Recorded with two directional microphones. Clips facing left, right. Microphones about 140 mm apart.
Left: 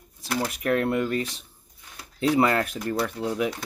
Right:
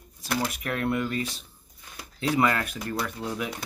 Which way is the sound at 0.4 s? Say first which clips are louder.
Left 6 dB; 35° left (ahead or behind).